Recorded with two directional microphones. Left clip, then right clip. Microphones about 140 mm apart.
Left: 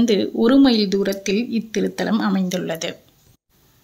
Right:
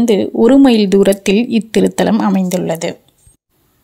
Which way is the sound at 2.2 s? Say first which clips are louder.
Right 7 dB; 35° right (ahead or behind).